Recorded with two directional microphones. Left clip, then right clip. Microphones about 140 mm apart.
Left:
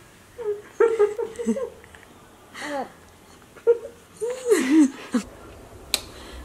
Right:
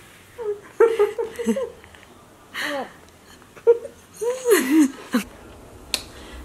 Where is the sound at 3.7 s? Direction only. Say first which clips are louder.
Right 3 dB; 25° right (ahead or behind).